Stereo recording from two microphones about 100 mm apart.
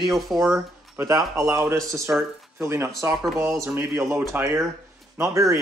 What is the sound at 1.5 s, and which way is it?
Speech, 30° right (ahead or behind).